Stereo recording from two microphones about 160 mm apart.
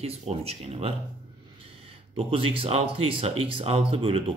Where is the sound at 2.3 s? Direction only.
35° right (ahead or behind).